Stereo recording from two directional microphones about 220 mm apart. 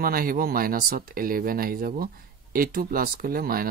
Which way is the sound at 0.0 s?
40° right (ahead or behind).